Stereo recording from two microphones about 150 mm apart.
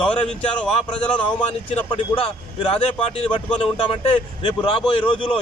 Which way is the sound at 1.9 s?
40° left (ahead or behind).